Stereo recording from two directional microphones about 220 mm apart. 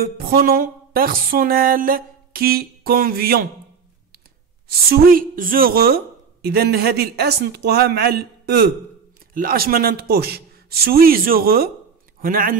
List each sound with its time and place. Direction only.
0.0 s music: 45° right (ahead or behind)
4.6 s a man's voice: 45° right (ahead or behind)